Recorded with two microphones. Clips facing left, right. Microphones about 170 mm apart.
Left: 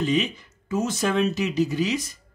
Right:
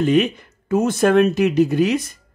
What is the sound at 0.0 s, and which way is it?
Speech, 60° right (ahead or behind).